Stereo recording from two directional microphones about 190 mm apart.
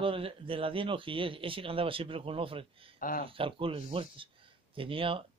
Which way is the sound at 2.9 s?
45° left (ahead or behind).